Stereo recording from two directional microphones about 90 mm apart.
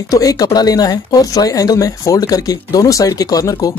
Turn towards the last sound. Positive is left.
turn(degrees=40)  # may be behind; listen again after turning